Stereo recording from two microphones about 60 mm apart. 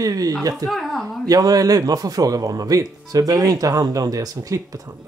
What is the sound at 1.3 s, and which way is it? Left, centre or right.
Speech, right.